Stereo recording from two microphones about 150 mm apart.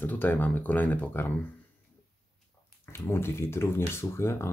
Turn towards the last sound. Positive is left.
turn(degrees=15)  # may be behind; listen again after turning